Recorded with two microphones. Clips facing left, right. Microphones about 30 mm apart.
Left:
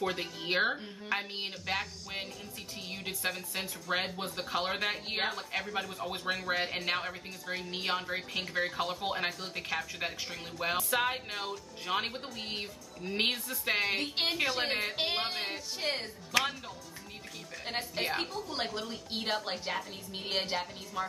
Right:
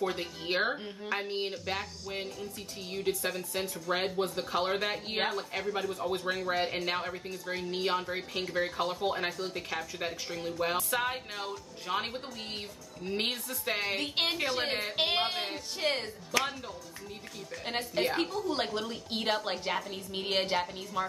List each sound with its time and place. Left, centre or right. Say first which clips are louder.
0.0 s speech: right 1 dB; centre
14.0 s a woman's voice: right 2 dB; centre
14.5 s a woman's voice: even; centre
15.0 s a woman's voice: right 3 dB; centre
15.2 s a woman's voice: right 2 dB; centre
16.3 s speech: left 1 dB; centre
17.6 s a woman's voice: right 3 dB; centre